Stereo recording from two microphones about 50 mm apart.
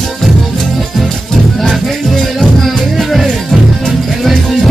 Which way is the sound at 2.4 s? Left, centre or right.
Centre.